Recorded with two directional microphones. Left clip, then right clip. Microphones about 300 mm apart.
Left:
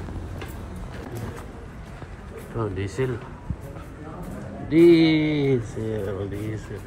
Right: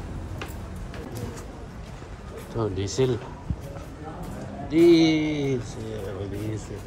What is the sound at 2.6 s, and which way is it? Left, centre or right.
Speech, centre.